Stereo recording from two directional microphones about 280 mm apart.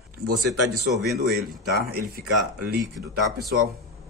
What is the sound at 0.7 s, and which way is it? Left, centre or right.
Speech, centre.